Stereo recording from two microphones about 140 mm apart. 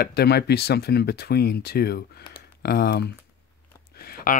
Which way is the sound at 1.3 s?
90° left.